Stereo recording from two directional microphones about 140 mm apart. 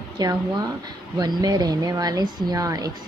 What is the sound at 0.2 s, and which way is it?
A woman's voice, 30° right (ahead or behind).